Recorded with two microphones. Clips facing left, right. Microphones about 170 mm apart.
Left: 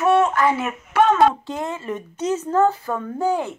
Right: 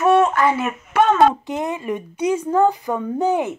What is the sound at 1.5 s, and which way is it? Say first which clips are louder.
A woman's voice: right 3 dB; 20° right (ahead or behind).